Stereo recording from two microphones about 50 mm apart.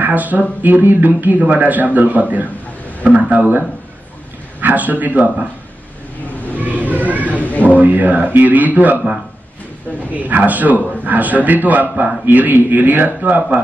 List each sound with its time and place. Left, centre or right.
0.0 s speech: right
6.8 s a sound: right
7.4 s speech: left
7.7 s speech: right
10.1 s speech: right